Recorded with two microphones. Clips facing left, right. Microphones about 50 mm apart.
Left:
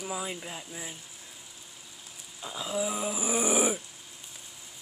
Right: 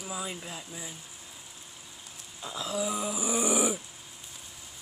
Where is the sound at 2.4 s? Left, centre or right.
Centre.